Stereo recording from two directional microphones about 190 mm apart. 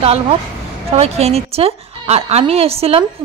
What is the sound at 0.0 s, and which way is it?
A woman's voice, 30° right (ahead or behind).